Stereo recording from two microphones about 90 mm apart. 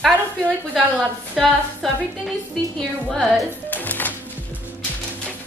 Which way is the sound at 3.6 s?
20° left (ahead or behind).